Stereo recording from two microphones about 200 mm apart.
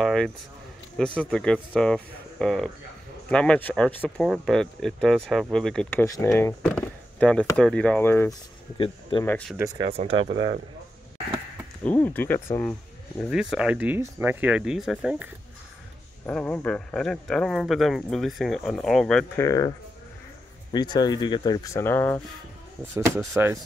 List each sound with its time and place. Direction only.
0.0 s a sound: 5° left (ahead or behind)
0.9 s speech: 5° left (ahead or behind)
6.7 s chop: 5° left (ahead or behind)
7.5 s speech: 5° left (ahead or behind)
8.7 s speech: 25° left (ahead or behind)
9.2 s speech: 10° left (ahead or behind)
9.8 s speech: 30° right (ahead or behind)
11.8 s speech: 10° left (ahead or behind)
13.2 s speech: 5° right (ahead or behind)
16.3 s speech: 5° left (ahead or behind)
19.4 s speech: 20° left (ahead or behind)
20.7 s speech: 20° left (ahead or behind)
22.9 s speech: 15° right (ahead or behind)